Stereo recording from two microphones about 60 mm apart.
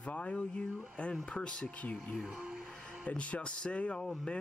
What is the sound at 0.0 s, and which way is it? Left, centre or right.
Speech, left.